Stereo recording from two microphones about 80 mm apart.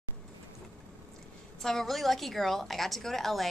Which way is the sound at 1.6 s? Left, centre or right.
Centre.